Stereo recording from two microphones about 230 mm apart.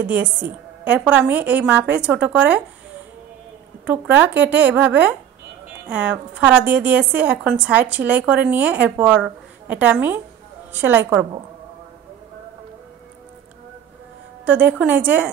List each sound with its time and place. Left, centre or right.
0.0 s a woman's voice: centre
3.8 s a woman's voice: centre
14.4 s a woman's voice: centre